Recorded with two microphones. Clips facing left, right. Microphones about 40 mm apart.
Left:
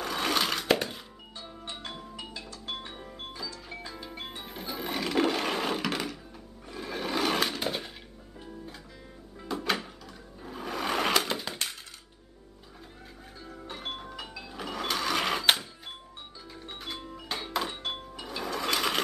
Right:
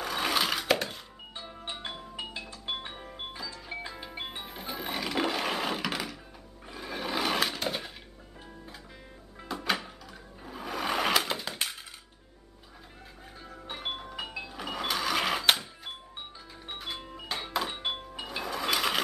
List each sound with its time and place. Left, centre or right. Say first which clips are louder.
0.0 s a sound: even; centre
1.4 s music: right 1 dB; right
4.7 s music: left 3 dB; centre
6.7 s a sound: left 1 dB; centre
9.5 s music: left 1 dB; centre
10.4 s sewing machine: even; centre
13.5 s music: right 2 dB; centre
14.5 s cash register: left 1 dB; centre
16.6 s music: right 1 dB; centre
17.0 s music: even; centre
17.3 s music: even; centre
17.8 s music: right 2 dB; centre
18.2 s sewing machine: left 1 dB; centre